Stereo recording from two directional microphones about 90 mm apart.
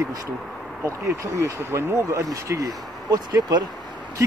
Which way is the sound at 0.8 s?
35° right (ahead or behind).